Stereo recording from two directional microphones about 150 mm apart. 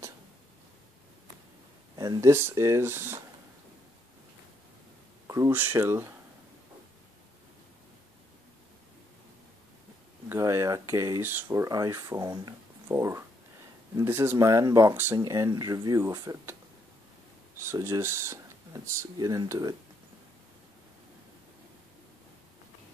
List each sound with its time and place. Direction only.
2.0 s speech: 25° right (ahead or behind)
5.2 s speech: 20° right (ahead or behind)
10.2 s speech: 15° right (ahead or behind)
17.6 s speech: 20° right (ahead or behind)